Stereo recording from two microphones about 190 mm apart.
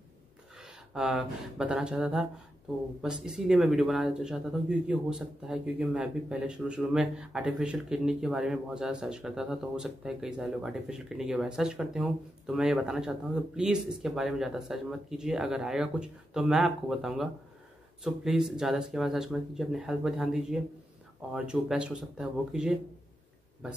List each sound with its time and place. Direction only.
0.6 s speech: 5° right (ahead or behind)